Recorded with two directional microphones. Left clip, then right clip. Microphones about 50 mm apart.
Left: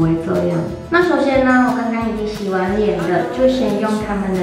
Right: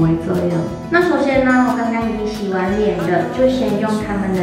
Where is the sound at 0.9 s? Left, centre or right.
Left.